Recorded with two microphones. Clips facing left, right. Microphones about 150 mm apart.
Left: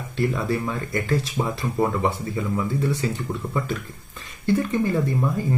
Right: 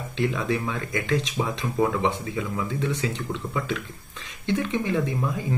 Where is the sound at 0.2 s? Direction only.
Centre (ahead or behind).